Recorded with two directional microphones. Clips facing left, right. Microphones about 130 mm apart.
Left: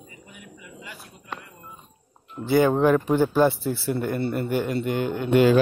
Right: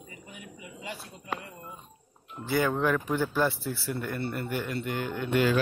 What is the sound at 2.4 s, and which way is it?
Speech, 25° left (ahead or behind).